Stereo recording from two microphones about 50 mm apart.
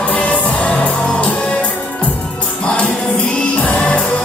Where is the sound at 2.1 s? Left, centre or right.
Centre.